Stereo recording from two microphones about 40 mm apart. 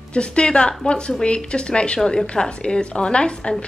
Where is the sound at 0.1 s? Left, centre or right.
Left.